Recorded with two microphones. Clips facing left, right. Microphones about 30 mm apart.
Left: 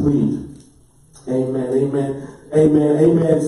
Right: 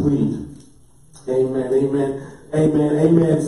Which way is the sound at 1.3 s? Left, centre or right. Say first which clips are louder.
Right 1 dB; centre.